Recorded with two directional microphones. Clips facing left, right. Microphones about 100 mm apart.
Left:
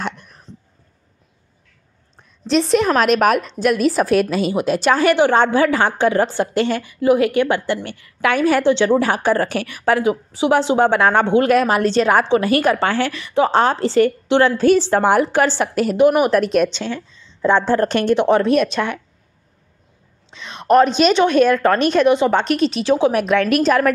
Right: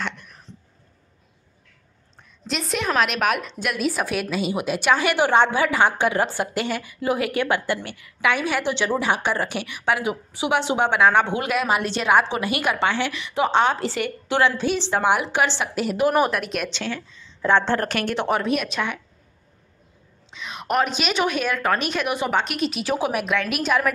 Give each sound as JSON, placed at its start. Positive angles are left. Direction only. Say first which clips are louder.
{"t": 0.0, "sound": "a sound", "louder": "left 4 dB", "side_deg": 35}
{"t": 2.4, "sound": "a woman's voice", "louder": "left 10 dB", "side_deg": 35}
{"t": 8.2, "sound": "a woman's voice", "louder": "left 6 dB", "side_deg": 45}
{"t": 14.4, "sound": "a woman's voice", "louder": "left 7 dB", "side_deg": 45}
{"t": 16.0, "sound": "a woman's voice", "louder": "left 7 dB", "side_deg": 15}
{"t": 18.4, "sound": "a woman's voice", "louder": "left 7 dB", "side_deg": 35}
{"t": 20.2, "sound": "a sound", "louder": "left 1 dB", "side_deg": -5}
{"t": 20.6, "sound": "a woman's voice", "louder": "left 10 dB", "side_deg": 35}
{"t": 23.1, "sound": "a woman's voice", "louder": "left 7 dB", "side_deg": -5}